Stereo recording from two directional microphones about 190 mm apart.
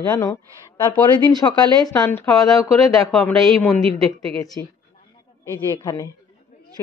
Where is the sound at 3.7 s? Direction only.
Centre (ahead or behind).